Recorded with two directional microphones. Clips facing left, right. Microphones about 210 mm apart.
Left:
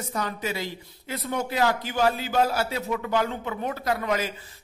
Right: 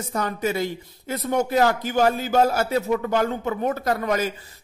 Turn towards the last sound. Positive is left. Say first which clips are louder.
# right 3 dB
turn(degrees=-45)  # may be behind; listen again after turning